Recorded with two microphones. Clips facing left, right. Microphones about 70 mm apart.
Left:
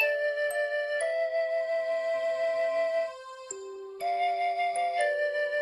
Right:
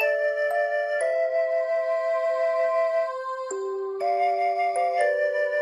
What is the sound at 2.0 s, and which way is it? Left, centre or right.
Music, right.